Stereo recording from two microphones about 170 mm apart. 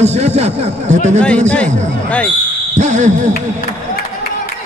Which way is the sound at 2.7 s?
45° right (ahead or behind).